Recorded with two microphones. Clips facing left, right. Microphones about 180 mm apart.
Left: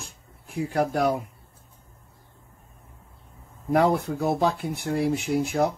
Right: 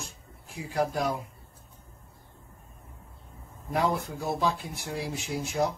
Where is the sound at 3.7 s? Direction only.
60° left (ahead or behind).